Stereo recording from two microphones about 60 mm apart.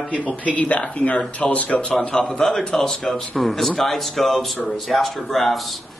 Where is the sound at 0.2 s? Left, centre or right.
Left.